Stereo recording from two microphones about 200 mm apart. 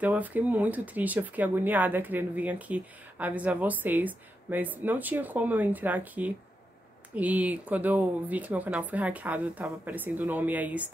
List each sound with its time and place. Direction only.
0.0 s speech: 10° right (ahead or behind)